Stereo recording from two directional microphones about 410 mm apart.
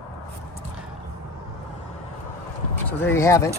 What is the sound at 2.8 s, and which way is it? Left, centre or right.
Speech, centre.